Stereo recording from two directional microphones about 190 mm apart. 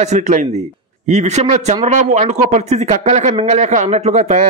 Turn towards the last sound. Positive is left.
turn(degrees=-35)  # may be behind; listen again after turning